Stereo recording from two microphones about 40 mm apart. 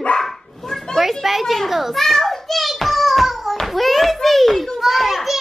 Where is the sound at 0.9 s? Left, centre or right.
Centre.